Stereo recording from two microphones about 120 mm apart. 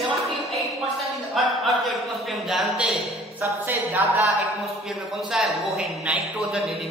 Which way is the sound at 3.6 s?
15° right (ahead or behind).